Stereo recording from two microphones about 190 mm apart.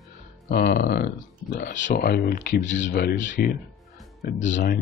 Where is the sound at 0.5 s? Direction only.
55° left (ahead or behind).